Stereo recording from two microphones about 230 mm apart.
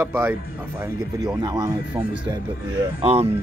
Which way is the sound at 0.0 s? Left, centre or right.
Centre.